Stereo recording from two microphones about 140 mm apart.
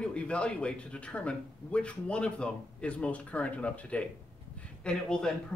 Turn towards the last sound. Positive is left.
turn(degrees=5)  # may be behind; listen again after turning